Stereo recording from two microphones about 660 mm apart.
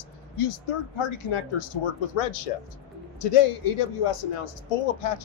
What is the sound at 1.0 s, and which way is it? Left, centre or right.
Speech, left.